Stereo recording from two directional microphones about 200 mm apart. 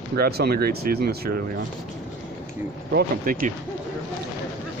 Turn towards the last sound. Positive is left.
turn(degrees=-45)  # may be behind; listen again after turning